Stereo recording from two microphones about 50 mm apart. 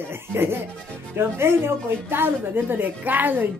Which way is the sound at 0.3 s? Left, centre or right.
Right.